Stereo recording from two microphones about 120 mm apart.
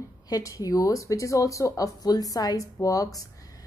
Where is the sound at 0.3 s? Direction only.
30° left (ahead or behind).